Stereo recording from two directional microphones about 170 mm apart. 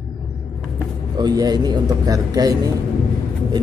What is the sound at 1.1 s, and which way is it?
Speech, 25° right (ahead or behind).